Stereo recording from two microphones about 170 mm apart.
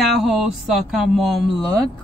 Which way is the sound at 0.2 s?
Centre (ahead or behind).